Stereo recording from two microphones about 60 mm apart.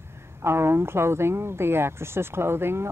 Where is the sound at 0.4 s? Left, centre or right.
Right.